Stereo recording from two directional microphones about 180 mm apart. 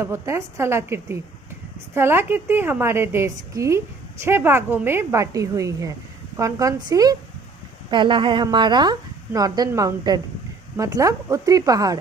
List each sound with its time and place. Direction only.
0.0 s a woman's voice: 15° right (ahead or behind)